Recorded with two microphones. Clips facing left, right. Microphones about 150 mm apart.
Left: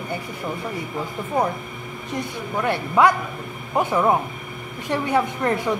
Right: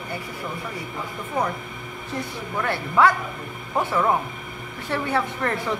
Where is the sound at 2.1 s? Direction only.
20° left (ahead or behind).